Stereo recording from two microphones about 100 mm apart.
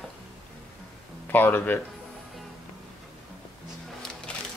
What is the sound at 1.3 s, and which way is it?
Speech, 20° left (ahead or behind).